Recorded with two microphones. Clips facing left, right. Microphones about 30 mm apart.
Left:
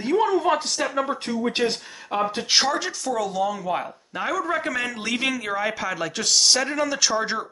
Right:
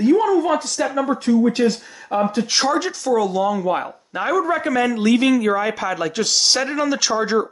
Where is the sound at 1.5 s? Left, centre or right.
Left.